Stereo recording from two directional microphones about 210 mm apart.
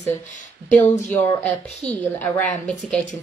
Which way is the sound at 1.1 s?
10° left (ahead or behind).